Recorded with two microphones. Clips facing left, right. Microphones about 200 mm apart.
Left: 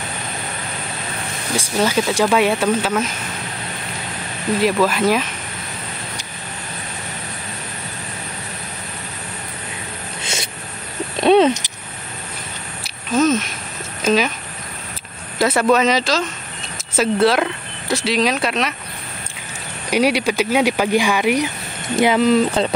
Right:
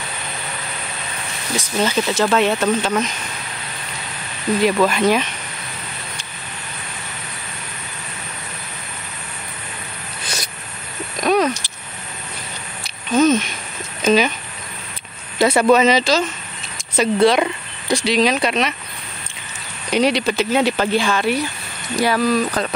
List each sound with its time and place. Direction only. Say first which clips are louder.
1.8 s speech: left 1 dB; 10° left (ahead or behind)
4.6 s speech: right 1 dB; 5° left (ahead or behind)
10.2 s a sound: left 1 dB; 25° left (ahead or behind)
12.8 s a sound: right 2 dB; centre (ahead or behind)
15.4 s speech: right 2 dB; centre (ahead or behind)
19.9 s speech: even; 10° left (ahead or behind); by 22.8 s 25° left (ahead or behind)